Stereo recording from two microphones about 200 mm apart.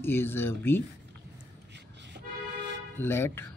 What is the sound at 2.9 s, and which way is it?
Speech, 10° left (ahead or behind).